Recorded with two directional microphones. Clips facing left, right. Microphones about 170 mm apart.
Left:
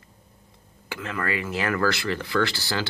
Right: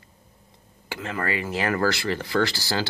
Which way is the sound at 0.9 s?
30° right (ahead or behind).